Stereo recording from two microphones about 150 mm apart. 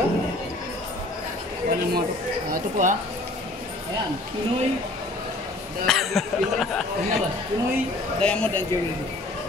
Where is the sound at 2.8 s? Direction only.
55° right (ahead or behind).